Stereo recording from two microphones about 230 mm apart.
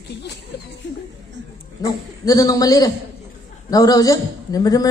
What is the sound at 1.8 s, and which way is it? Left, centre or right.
A man's voice, centre.